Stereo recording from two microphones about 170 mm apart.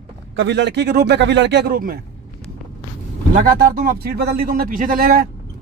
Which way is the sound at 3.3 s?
55° right (ahead or behind).